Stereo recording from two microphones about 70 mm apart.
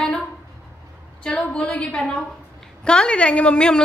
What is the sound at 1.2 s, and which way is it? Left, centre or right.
A woman's voice, centre.